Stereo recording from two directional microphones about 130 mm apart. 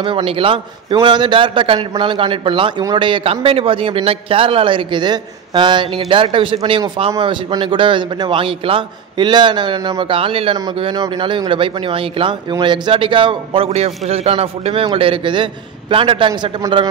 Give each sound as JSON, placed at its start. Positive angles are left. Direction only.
{"t": 0.0, "sound": "a man's voice", "side_deg": -40}